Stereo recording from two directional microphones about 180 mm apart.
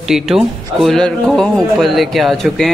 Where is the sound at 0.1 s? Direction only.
Centre (ahead or behind).